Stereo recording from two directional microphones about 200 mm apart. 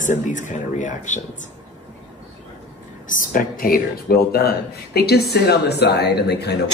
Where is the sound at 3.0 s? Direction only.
45° left (ahead or behind).